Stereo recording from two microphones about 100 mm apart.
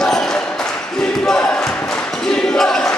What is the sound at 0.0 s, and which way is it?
Basketball bounce, 5° left (ahead or behind).